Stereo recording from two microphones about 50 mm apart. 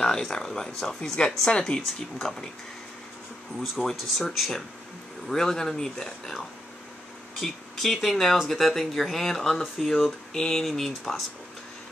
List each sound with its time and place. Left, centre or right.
0.0 s speech: centre
1.8 s speech: centre
3.6 s speech: centre
5.3 s speech: centre